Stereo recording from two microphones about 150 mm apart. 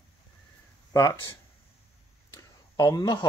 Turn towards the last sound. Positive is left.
turn(degrees=25)  # may be behind; listen again after turning